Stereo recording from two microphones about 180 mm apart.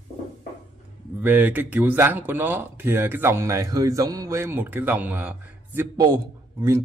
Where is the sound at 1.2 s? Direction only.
10° right (ahead or behind).